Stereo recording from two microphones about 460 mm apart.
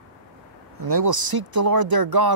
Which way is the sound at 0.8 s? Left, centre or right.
Right.